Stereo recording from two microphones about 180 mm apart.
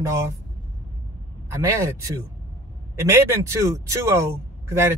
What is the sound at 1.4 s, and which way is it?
Speech, 15° right (ahead or behind).